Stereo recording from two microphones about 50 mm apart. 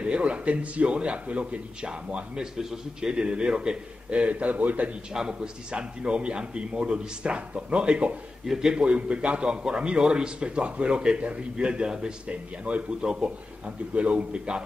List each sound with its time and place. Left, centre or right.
0.0 s a man's voice: right
5.1 s a man's voice: centre
8.5 s a man's voice: centre
8.8 s a man's voice: right
13.0 s a man's voice: centre
13.9 s a man's voice: right